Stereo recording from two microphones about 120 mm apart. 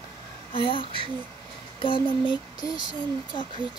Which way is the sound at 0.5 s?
45° left (ahead or behind).